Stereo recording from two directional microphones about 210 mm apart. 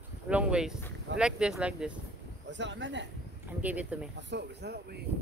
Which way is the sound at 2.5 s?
60° right (ahead or behind).